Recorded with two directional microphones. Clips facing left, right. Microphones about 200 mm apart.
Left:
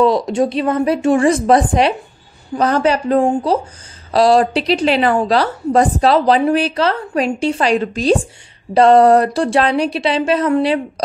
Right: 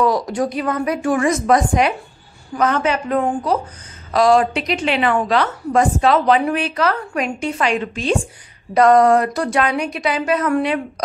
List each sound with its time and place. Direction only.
0.0 s a woman's voice: 25° left (ahead or behind)